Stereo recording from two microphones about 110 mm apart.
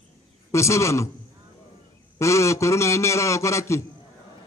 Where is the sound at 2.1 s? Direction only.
25° left (ahead or behind).